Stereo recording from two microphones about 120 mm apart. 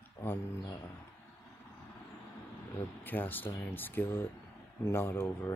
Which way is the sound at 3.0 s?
15° left (ahead or behind).